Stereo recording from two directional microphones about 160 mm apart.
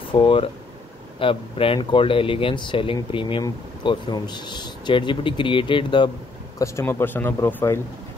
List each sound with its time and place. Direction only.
0.1 s speech: 30° left (ahead or behind)
6.6 s speech: 15° left (ahead or behind)